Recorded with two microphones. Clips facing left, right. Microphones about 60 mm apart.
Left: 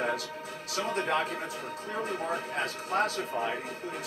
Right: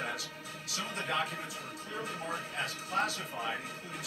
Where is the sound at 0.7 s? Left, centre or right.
Left.